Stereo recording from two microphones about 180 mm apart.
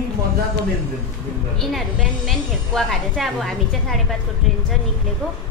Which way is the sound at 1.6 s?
Centre (ahead or behind).